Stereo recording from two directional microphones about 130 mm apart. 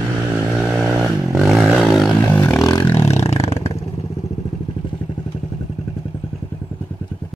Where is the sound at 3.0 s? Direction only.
55° left (ahead or behind).